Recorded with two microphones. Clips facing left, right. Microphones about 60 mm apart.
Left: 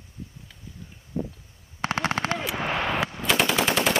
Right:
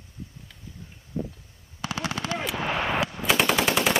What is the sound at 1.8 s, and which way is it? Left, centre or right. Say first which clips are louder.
Machine gun: left 5 dB; left.